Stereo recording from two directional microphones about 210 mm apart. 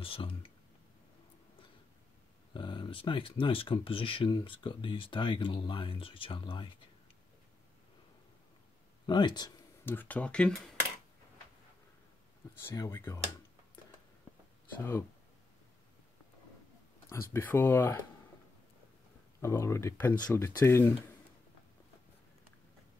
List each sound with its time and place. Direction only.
0.0 s speech: 25° left (ahead or behind)
2.5 s speech: 20° left (ahead or behind)
9.0 s a sound: 20° left (ahead or behind)
9.9 s speech: 5° left (ahead or behind)
12.5 s speech: 15° left (ahead or behind)
17.1 s speech: 10° left (ahead or behind)
19.4 s speech: 15° left (ahead or behind)